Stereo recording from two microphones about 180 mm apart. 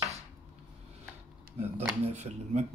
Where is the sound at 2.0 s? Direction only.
40° right (ahead or behind).